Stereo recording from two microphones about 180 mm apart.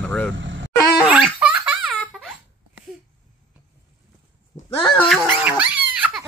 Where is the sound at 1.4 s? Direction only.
5° right (ahead or behind).